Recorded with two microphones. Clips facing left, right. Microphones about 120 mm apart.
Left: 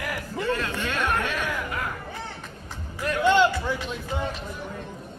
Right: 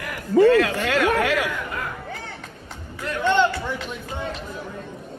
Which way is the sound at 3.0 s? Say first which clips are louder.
Even; 10° left (ahead or behind).